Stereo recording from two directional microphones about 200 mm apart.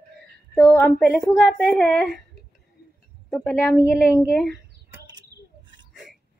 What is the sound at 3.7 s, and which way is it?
Speech, 15° left (ahead or behind).